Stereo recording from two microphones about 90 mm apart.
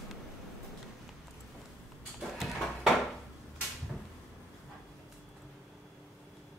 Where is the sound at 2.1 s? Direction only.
5° right (ahead or behind).